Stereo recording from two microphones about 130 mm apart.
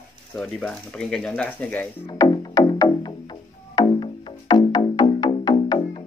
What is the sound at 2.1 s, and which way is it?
Music, 25° left (ahead or behind).